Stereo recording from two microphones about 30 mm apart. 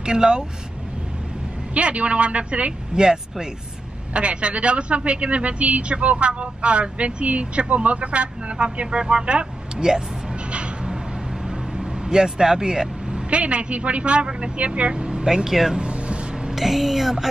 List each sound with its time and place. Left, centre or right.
0.0 s speech: right
1.7 s a woman's voice: right
3.0 s speech: right
4.1 s a woman's voice: right
11.4 s vehicle: right
13.3 s a woman's voice: right
14.7 s speech: right
15.2 s speech: right
15.9 s vehicle: right
16.5 s speech: centre